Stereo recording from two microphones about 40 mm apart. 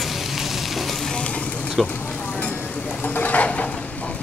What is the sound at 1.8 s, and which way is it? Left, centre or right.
Speech, centre.